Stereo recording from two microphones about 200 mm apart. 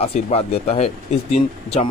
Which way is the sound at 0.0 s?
30° left (ahead or behind).